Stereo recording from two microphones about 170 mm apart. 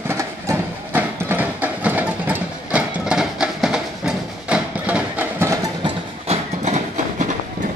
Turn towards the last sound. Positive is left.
turn(degrees=-45)  # may be behind; listen again after turning